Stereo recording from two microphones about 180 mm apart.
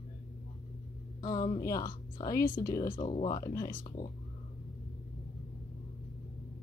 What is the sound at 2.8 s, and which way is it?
Speech, 45° left (ahead or behind).